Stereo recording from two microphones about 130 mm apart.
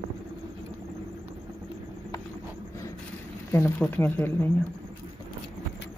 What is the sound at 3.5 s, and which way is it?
Speech, 15° left (ahead or behind).